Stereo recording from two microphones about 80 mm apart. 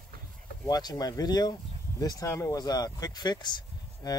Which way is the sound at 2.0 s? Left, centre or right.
Left.